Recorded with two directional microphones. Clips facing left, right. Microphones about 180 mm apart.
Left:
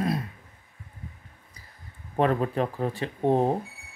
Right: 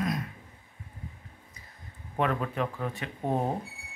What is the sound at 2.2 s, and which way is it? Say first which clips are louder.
Speech: left 5 dB; 35° left (ahead or behind).